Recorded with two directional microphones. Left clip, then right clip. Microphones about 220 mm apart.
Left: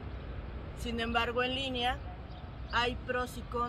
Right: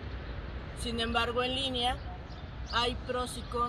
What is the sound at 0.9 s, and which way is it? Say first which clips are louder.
Speech: right 1 dB; 25° left (ahead or behind).